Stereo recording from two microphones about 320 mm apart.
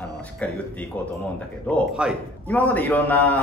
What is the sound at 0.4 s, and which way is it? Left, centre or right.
Speech, centre.